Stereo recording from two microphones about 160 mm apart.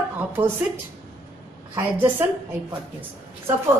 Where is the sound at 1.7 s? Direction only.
15° right (ahead or behind).